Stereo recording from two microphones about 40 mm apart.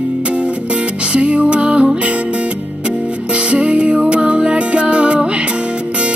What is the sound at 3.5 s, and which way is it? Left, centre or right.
Music, right.